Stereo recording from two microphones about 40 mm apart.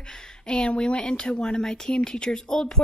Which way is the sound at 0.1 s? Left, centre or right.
Left.